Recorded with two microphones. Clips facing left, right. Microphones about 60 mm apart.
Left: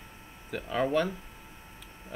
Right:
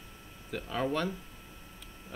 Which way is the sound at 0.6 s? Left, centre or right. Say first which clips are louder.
Left 4 dB; left.